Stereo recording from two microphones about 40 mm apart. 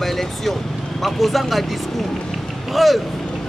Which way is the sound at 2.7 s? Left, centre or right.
Centre.